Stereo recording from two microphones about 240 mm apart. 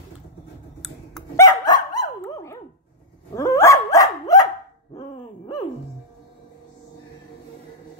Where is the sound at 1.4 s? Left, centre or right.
Centre.